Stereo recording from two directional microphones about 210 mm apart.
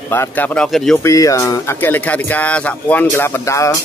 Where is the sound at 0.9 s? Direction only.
15° left (ahead or behind).